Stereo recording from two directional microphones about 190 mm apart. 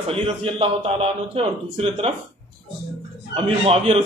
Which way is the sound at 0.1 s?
30° right (ahead or behind).